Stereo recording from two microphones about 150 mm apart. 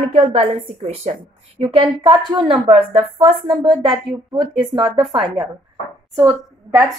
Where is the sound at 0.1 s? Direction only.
45° right (ahead or behind).